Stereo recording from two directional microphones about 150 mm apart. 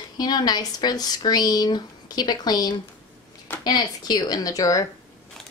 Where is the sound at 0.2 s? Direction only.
25° left (ahead or behind).